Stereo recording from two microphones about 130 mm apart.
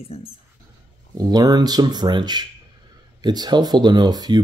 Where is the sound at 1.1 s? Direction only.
30° right (ahead or behind).